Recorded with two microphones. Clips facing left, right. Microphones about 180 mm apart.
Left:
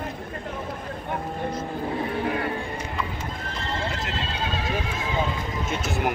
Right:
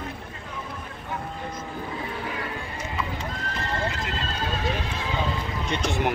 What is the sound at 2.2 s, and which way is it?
Music, 55° left (ahead or behind).